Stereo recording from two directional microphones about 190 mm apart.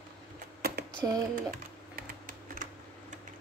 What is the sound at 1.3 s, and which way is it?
Typing, 50° right (ahead or behind).